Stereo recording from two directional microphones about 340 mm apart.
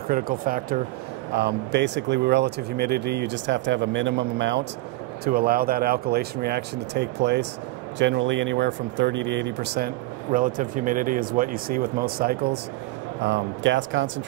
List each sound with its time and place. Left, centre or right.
0.1 s speech: right